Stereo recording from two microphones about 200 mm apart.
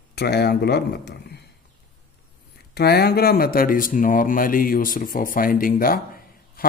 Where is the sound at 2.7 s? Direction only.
50° left (ahead or behind).